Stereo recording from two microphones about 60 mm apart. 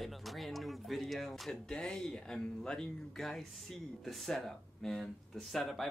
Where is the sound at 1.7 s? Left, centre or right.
Centre.